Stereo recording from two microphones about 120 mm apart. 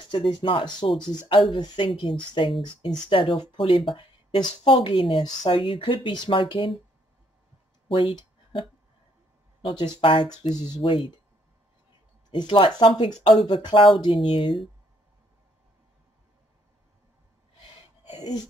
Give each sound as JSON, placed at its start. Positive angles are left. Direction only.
{"t": 0.1, "sound": "speech", "side_deg": 45}
{"t": 7.9, "sound": "a sound", "side_deg": 45}
{"t": 9.8, "sound": "speech", "side_deg": 45}
{"t": 12.3, "sound": "speech", "side_deg": 40}